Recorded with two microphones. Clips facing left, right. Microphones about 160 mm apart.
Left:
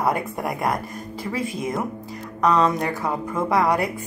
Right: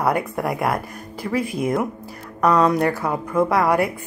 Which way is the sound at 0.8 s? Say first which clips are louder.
Even; 25° left (ahead or behind).